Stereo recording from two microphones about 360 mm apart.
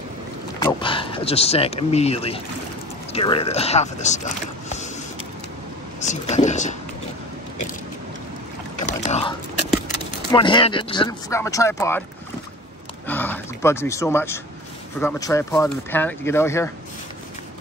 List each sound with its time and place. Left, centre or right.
0.6 s speech: centre
5.9 s speech: centre
8.7 s a sound: centre
10.3 s speech: centre
13.0 s gasp: centre
15.0 s speech: centre